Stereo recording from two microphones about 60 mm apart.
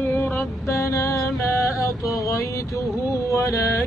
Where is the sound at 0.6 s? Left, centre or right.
Left.